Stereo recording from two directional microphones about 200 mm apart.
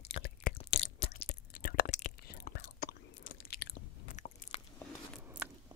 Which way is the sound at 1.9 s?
45° left (ahead or behind).